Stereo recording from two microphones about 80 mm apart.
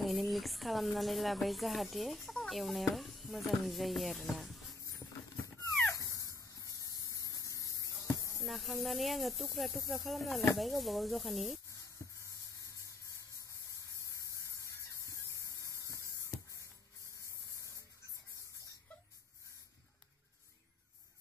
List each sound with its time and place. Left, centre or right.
0.0 s speech: centre
5.5 s dog: centre
6.1 s spray: left
8.4 s speech: centre
12.0 s a sound: left
14.1 s a sound: left